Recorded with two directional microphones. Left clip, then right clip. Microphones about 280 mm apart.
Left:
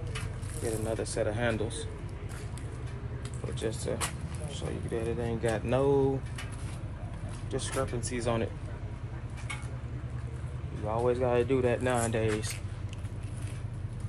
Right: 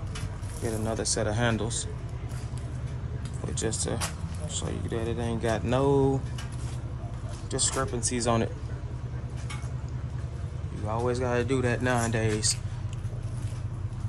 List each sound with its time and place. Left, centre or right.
0.8 s speech: centre
3.5 s speech: centre
7.5 s speech: centre
10.9 s speech: centre